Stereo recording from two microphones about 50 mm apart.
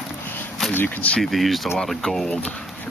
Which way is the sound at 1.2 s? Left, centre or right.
Centre.